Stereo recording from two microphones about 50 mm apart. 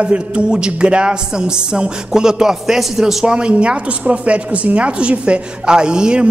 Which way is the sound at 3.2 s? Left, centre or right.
Centre.